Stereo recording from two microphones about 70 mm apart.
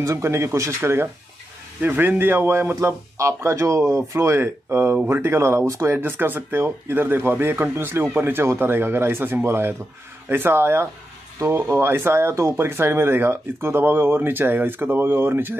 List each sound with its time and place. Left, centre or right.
0.0 s speech: right
2.7 s speech: right
4.9 s speech: right
5.2 s speech: right